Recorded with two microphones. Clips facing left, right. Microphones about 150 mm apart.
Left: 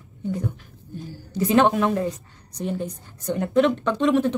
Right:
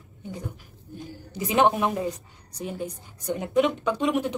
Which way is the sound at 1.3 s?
15° right (ahead or behind).